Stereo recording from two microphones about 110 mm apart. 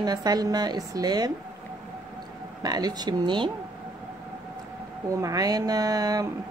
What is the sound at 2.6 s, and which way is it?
Speech, 35° right (ahead or behind).